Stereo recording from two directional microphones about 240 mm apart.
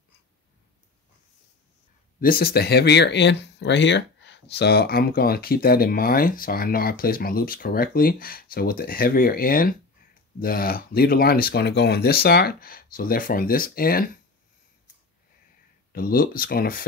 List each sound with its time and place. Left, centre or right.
2.1 s speech: left
15.9 s speech: left